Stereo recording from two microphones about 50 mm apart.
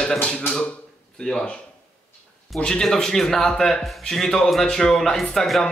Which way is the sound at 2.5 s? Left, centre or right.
Centre.